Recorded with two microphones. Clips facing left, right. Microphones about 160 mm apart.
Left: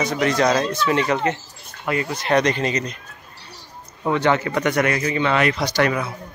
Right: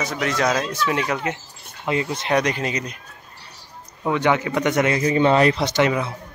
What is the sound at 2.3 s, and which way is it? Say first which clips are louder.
Speech: left 3 dB; 10° right (ahead or behind).